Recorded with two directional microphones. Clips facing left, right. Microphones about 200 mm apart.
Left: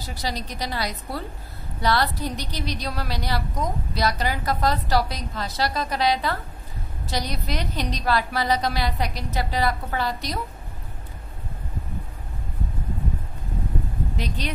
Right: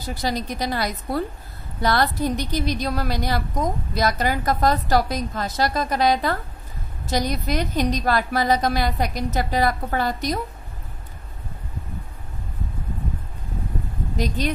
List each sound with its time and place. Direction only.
0.0 s a woman's voice: 50° right (ahead or behind)
14.1 s a woman's voice: 45° right (ahead or behind)